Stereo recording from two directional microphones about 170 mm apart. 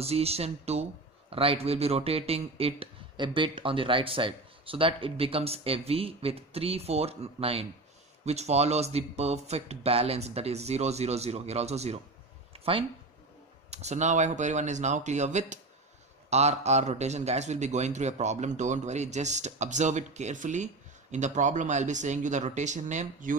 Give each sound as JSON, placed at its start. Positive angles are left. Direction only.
{"t": 0.0, "sound": "a man's voice", "side_deg": -35}
{"t": 12.5, "sound": "a sound", "side_deg": -35}
{"t": 13.7, "sound": "a man's voice", "side_deg": -40}